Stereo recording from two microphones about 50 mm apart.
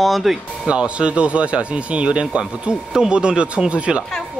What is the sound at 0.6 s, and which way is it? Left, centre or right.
Speech, right.